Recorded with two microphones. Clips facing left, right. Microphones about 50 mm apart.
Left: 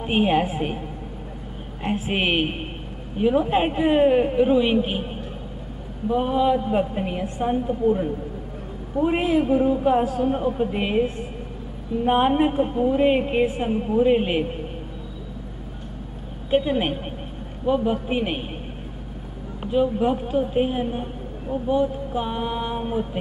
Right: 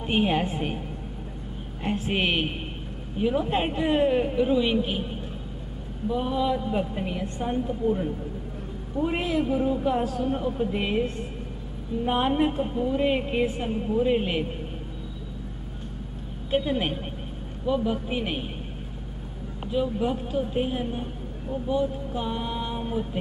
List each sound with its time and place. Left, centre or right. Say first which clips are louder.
0.0 s a woman's voice: left 4 dB; centre
1.8 s a woman's voice: left 2 dB; centre
7.2 s a woman's voice: left 6 dB; centre
16.4 s speech: left 4 dB; centre
19.6 s a woman's voice: left 5 dB; centre